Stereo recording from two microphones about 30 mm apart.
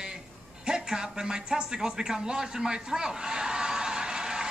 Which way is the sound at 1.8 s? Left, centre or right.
Centre.